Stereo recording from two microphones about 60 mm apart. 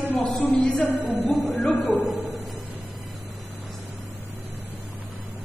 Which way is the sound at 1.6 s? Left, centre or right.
Left.